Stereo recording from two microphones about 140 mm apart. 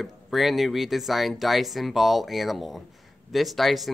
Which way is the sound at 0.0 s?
Centre (ahead or behind).